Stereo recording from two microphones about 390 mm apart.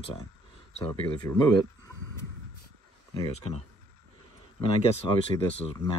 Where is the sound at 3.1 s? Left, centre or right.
Centre.